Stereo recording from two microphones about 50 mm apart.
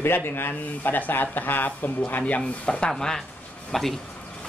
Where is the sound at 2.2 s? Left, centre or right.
Left.